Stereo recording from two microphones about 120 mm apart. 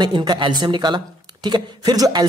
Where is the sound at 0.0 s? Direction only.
35° right (ahead or behind).